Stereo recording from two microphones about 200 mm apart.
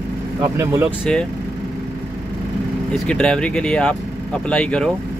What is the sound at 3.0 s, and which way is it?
Speech, 5° left (ahead or behind).